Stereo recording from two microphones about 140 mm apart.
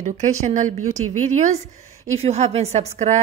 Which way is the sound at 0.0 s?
55° right (ahead or behind).